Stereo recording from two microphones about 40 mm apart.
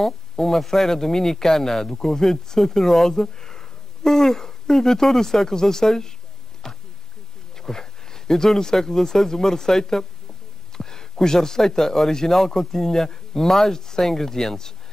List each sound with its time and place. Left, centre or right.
0.0 s speech: centre
6.6 s a sound: centre
7.5 s speech: centre